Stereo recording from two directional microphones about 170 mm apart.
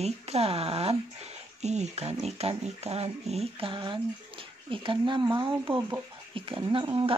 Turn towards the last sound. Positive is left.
turn(degrees=-30)  # may be behind; listen again after turning